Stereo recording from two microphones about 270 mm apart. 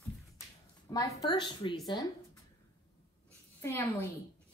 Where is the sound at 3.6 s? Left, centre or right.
Centre.